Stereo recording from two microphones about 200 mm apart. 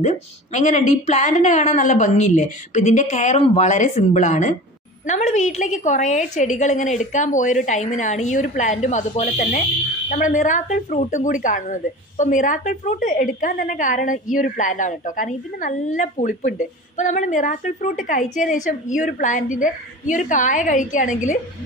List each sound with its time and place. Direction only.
0.0 s a woman's voice: 35° left (ahead or behind)